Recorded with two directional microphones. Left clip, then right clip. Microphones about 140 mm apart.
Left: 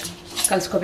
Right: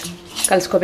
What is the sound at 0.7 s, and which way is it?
Speech, 30° right (ahead or behind).